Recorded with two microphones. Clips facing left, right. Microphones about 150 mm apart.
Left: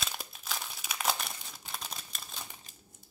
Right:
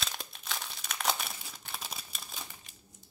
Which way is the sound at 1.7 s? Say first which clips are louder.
Even; centre (ahead or behind).